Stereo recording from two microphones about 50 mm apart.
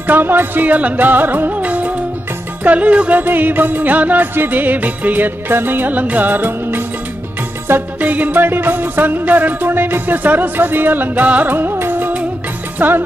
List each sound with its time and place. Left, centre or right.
0.0 s music: right
8.0 s music: right
11.5 s music: right